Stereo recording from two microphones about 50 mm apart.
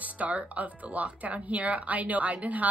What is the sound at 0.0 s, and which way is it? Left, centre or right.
Speech, right.